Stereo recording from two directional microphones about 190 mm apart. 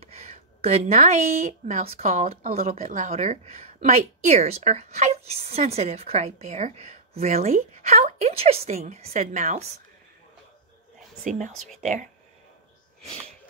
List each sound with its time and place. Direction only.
0.0 s speech: 35° right (ahead or behind)
11.2 s speech: 40° right (ahead or behind)